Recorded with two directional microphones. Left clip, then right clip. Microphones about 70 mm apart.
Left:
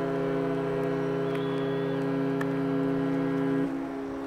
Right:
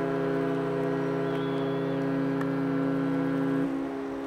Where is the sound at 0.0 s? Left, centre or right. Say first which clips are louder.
Even; centre.